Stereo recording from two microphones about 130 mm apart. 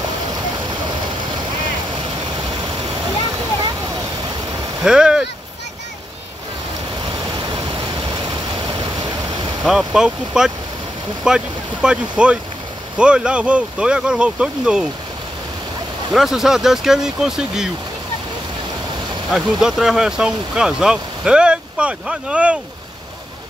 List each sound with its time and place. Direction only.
4.8 s a sound: 5° right (ahead or behind)
7.1 s vehicle: 35° right (ahead or behind)
9.6 s speech: centre (ahead or behind)
16.1 s speech: centre (ahead or behind)
19.3 s speech: 5° right (ahead or behind)